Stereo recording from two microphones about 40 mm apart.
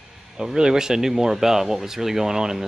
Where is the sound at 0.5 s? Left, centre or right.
Centre.